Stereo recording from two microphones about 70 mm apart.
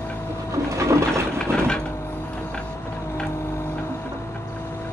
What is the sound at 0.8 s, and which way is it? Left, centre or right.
Water, right.